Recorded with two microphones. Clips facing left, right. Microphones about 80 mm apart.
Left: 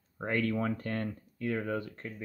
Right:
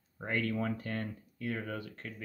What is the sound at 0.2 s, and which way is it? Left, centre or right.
Speech, left.